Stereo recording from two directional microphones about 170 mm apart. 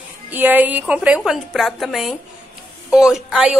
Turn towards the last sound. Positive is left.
turn(degrees=-5)  # may be behind; listen again after turning